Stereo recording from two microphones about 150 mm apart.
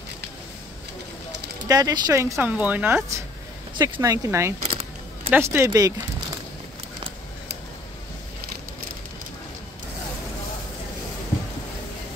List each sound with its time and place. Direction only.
1.7 s speech: 25° right (ahead or behind)
4.6 s keys jangling: 40° right (ahead or behind)
5.3 s speech: 15° right (ahead or behind)